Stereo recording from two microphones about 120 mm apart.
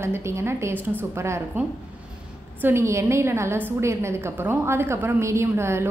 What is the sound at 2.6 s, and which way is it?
A woman's voice, 25° right (ahead or behind).